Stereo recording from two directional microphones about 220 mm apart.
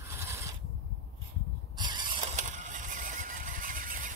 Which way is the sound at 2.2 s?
35° right (ahead or behind).